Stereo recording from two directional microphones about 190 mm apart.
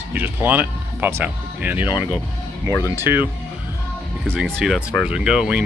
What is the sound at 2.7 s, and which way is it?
Speech, 15° left (ahead or behind).